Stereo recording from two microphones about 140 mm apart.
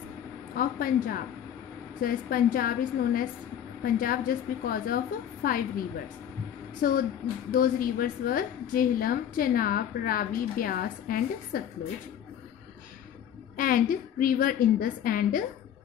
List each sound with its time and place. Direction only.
0.6 s a woman's voice: 90° left
13.6 s a woman's voice: 85° left